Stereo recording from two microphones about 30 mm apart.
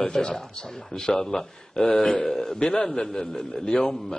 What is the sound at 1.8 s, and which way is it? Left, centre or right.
Speech, left.